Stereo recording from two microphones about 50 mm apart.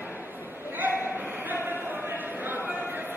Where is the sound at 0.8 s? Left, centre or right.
Right.